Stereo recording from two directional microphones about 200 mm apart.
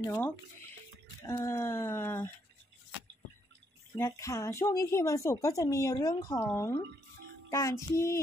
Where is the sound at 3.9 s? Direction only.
15° left (ahead or behind).